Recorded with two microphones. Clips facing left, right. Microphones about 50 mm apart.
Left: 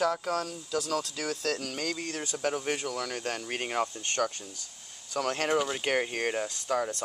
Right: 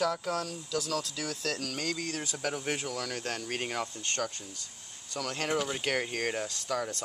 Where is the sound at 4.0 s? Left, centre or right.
Left.